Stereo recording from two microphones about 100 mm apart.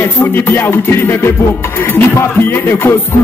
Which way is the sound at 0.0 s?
20° left (ahead or behind).